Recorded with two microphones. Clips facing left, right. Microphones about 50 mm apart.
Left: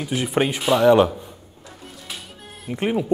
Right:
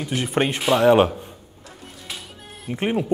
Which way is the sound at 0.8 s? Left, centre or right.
Centre.